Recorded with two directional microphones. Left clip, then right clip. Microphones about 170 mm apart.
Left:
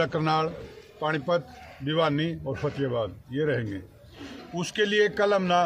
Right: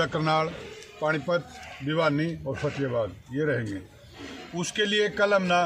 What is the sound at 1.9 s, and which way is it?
A man's voice, 30° left (ahead or behind).